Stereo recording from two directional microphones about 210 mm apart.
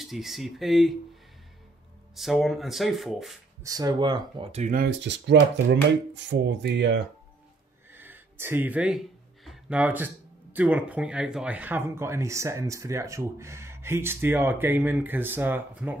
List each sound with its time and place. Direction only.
0.0 s speech: centre (ahead or behind)
2.1 s speech: centre (ahead or behind)
3.6 s speech: 20° right (ahead or behind); by 7.0 s 55° right (ahead or behind)
7.9 s speech: 10° right (ahead or behind)